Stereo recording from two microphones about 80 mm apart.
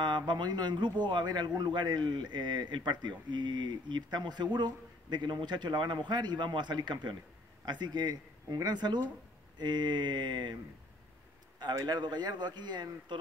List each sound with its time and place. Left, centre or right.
0.0 s a man's voice: right
11.6 s a man's voice: right